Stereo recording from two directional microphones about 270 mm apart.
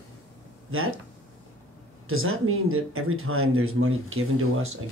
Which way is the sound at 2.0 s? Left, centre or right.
Right.